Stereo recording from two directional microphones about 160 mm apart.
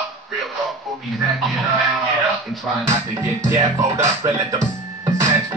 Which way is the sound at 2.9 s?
20° right (ahead or behind).